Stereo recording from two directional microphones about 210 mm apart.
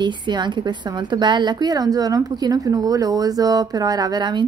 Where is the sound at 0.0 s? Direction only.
20° right (ahead or behind).